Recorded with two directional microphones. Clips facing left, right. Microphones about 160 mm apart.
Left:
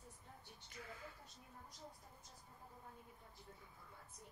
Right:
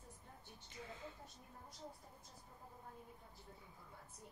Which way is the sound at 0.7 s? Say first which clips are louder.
Right 2 dB; 25° right (ahead or behind).